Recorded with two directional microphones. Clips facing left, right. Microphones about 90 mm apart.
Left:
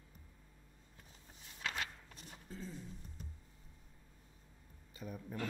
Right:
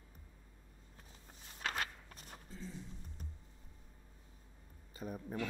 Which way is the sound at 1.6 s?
45° right (ahead or behind).